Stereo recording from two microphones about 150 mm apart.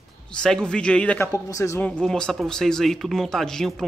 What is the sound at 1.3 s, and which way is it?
Speech, 20° left (ahead or behind).